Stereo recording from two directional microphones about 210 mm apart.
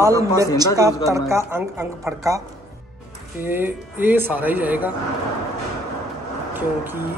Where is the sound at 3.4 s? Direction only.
10° right (ahead or behind).